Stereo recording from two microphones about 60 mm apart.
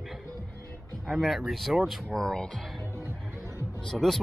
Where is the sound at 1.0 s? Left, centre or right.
Centre.